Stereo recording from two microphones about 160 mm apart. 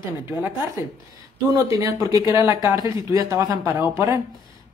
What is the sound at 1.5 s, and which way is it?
Speech, 20° right (ahead or behind).